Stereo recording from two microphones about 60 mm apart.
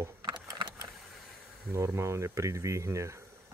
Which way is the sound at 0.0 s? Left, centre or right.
Right.